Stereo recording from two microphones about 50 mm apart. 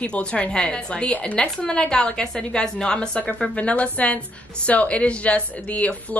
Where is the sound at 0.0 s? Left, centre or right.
Left.